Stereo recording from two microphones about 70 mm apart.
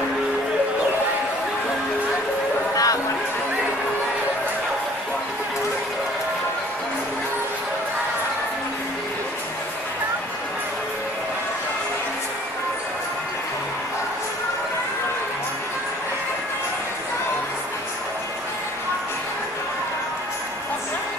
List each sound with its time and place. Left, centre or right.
2.7 s music: left